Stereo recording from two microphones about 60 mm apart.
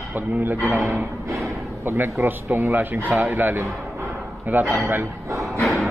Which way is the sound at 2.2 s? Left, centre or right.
Right.